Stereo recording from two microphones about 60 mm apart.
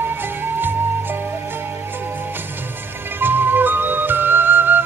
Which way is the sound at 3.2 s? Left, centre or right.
Right.